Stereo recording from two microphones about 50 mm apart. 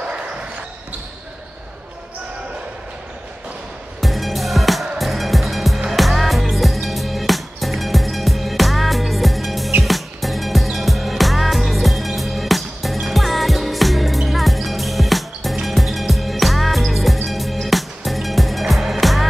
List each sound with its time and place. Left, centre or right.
0.0 s basketball bounce: right
4.0 s music: centre